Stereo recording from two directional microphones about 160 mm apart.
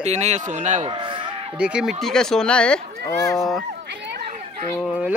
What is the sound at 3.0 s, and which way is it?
Speech, 20° left (ahead or behind).